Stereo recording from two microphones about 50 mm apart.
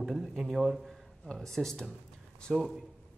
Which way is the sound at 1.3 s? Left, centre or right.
Centre.